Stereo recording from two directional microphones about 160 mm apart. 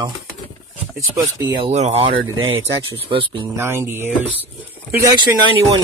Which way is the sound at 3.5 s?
15° right (ahead or behind).